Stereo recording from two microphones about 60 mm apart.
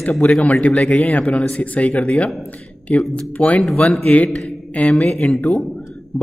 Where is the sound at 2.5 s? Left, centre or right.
Left.